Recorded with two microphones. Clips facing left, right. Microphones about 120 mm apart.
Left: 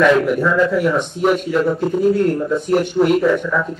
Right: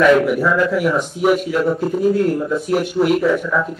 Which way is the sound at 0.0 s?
5° right (ahead or behind).